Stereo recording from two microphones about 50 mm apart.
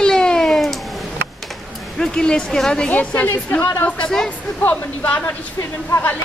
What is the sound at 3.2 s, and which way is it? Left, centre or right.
A woman's voice, left.